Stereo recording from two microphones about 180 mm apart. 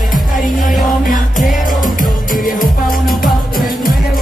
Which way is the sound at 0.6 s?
50° left (ahead or behind).